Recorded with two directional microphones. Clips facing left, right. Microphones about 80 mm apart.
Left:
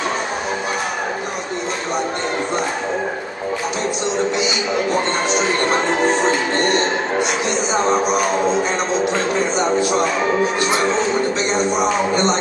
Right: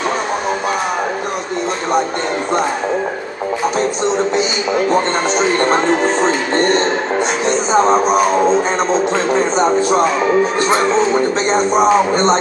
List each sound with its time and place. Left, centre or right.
5.3 s speech: right
11.5 s speech: right